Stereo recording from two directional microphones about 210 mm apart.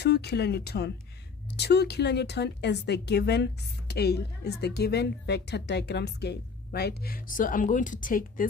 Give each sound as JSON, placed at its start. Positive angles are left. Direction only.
{"t": 0.0, "sound": "speech", "side_deg": 50}